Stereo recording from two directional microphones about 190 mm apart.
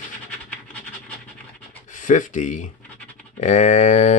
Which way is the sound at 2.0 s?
40° left (ahead or behind).